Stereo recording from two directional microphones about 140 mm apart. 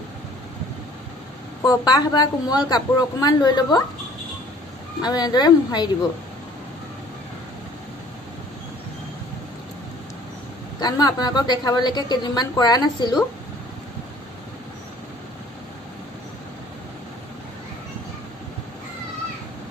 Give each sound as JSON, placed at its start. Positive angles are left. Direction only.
{"t": 1.7, "sound": "a woman's voice", "side_deg": 25}
{"t": 5.0, "sound": "a woman's voice", "side_deg": 30}
{"t": 10.8, "sound": "a woman's voice", "side_deg": 30}